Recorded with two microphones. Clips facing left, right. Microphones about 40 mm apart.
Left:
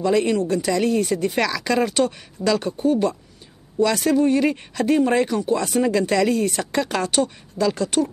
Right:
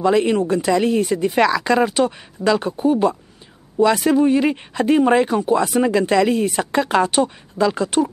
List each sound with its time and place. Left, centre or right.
0.0 s speech: right